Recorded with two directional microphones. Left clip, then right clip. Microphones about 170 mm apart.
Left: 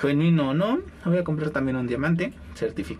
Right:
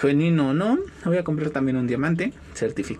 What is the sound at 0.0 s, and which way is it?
Speech, 15° right (ahead or behind).